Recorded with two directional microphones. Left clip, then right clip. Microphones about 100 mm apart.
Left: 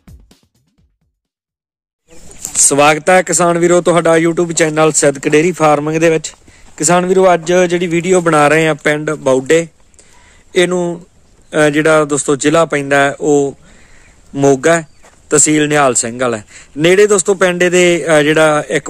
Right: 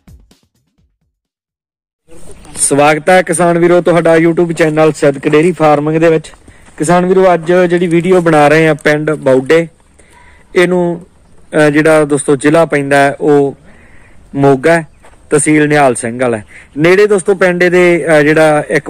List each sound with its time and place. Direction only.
2.7 s speech: 30° left (ahead or behind)
11.5 s speech: 25° left (ahead or behind)
14.7 s a man's voice: 40° left (ahead or behind)